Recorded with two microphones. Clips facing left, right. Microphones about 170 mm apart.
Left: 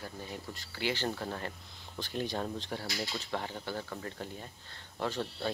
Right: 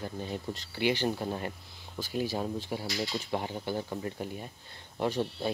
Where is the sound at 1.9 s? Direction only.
5° right (ahead or behind).